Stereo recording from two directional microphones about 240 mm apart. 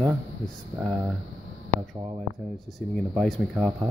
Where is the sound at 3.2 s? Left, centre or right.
Centre.